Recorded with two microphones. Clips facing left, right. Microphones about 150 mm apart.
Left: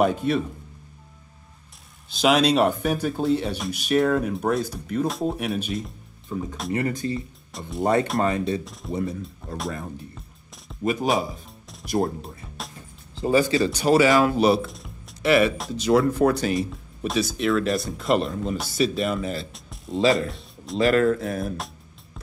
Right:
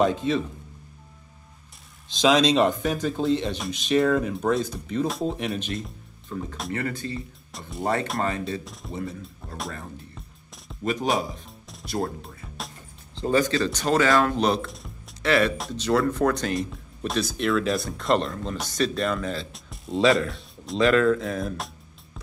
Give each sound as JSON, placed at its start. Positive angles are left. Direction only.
{"t": 0.0, "sound": "speech", "side_deg": 10}
{"t": 2.0, "sound": "speech", "side_deg": 10}
{"t": 6.7, "sound": "speech", "side_deg": 15}
{"t": 7.2, "sound": "speech", "side_deg": 0}
{"t": 7.8, "sound": "speech", "side_deg": 20}
{"t": 9.4, "sound": "speech", "side_deg": 0}
{"t": 10.8, "sound": "speech", "side_deg": 5}
{"t": 11.8, "sound": "speech", "side_deg": 15}
{"t": 12.2, "sound": "music", "side_deg": 0}
{"t": 13.6, "sound": "speech", "side_deg": 10}